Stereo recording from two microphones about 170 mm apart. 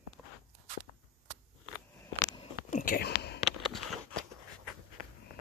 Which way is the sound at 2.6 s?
50° left (ahead or behind).